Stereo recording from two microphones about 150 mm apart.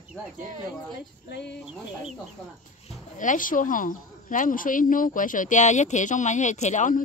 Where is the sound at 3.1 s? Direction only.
60° left (ahead or behind).